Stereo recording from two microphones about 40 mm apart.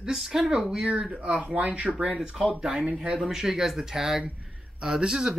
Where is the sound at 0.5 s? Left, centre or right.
Right.